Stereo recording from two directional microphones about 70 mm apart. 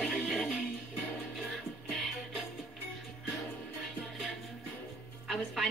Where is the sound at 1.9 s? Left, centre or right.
Centre.